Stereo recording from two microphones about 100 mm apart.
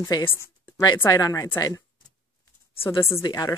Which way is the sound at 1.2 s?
35° left (ahead or behind).